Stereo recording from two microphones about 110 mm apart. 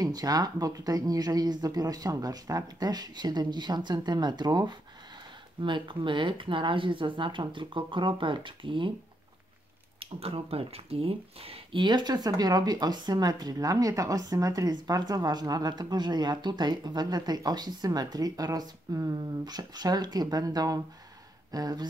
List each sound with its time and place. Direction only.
0.0 s speech: 35° right (ahead or behind)
9.9 s speech: 60° right (ahead or behind); by 21.8 s 35° right (ahead or behind)